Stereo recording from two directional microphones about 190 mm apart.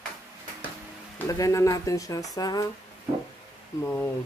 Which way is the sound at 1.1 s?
15° left (ahead or behind).